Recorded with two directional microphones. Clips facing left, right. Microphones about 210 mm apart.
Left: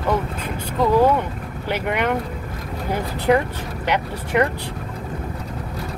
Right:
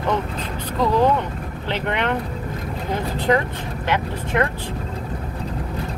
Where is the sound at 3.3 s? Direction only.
10° left (ahead or behind).